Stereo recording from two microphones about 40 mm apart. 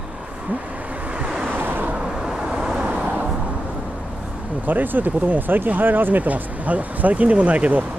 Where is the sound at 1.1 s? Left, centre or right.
Right.